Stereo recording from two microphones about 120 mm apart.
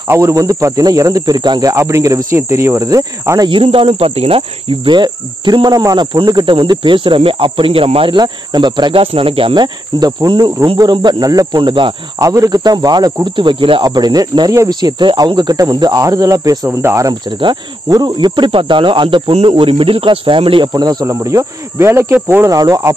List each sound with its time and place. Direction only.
0.1 s cricket: 25° right (ahead or behind)
3.4 s cricket: 45° right (ahead or behind)
10.8 s speech: 35° right (ahead or behind)
12.2 s speech: 30° right (ahead or behind); by 13.8 s 45° right (ahead or behind)
13.8 s speech: 35° right (ahead or behind)
17.8 s cricket: 30° right (ahead or behind)
19.3 s speech: 50° right (ahead or behind); by 22.5 s 20° right (ahead or behind)
22.5 s cricket: 30° right (ahead or behind)